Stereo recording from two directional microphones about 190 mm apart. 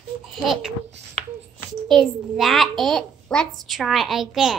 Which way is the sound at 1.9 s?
Centre (ahead or behind).